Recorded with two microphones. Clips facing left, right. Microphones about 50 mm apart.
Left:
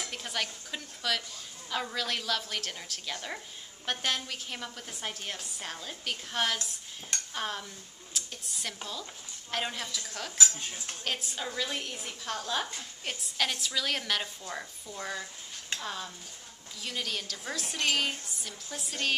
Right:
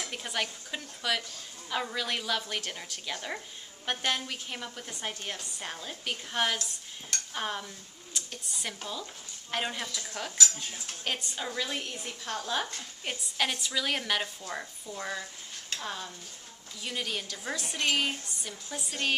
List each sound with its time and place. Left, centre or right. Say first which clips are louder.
0.0 s a woman's voice: right 1 dB; centre
10.3 s dishes: left 1 dB; left
11.1 s a woman's voice: right 1 dB; centre